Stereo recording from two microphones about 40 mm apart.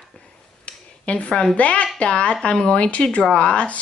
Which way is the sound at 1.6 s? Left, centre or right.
Left.